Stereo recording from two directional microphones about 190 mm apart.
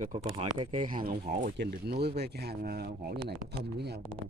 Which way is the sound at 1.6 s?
60° right (ahead or behind).